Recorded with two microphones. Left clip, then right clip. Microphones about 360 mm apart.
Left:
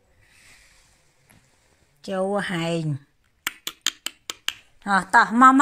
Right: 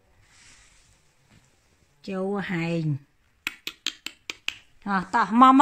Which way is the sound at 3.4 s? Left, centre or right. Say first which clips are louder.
Left 4 dB; centre.